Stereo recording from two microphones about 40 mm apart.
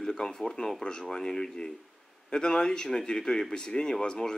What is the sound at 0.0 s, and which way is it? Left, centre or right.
Speech, centre.